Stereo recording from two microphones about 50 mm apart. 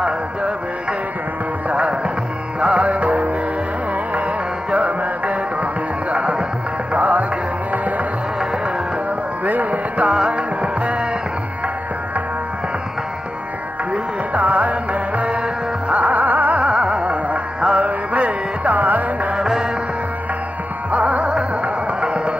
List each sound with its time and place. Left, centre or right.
1.7 s music: right
4.6 s music: right
9.4 s music: right
14.3 s music: right
16.6 s music: right
19.3 s music: centre
20.9 s music: right